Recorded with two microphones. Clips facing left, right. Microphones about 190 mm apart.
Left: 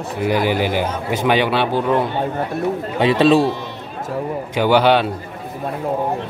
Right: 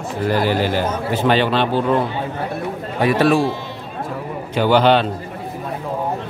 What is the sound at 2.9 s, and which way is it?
Speech, 20° left (ahead or behind).